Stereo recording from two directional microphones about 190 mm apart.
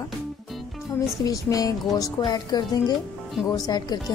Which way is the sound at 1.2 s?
20° left (ahead or behind).